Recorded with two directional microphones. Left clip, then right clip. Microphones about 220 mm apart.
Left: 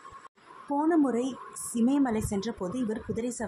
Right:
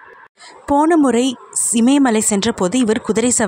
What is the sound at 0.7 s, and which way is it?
A woman's voice, 35° right (ahead or behind).